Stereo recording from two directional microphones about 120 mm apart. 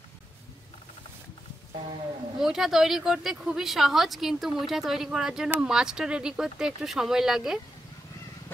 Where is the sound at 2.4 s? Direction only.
5° right (ahead or behind).